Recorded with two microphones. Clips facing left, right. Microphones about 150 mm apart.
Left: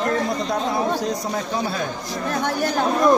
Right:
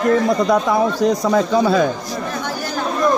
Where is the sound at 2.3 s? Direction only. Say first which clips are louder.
Left 6 dB; 60° left (ahead or behind).